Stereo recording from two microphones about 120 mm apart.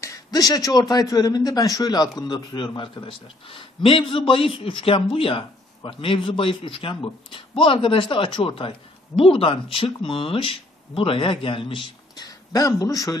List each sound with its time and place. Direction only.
0.0 s a man's voice: 30° left (ahead or behind)
12.3 s a man's voice: 30° left (ahead or behind)